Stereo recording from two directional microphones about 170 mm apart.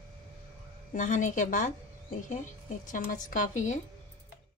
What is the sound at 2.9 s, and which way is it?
Speech, 50° left (ahead or behind).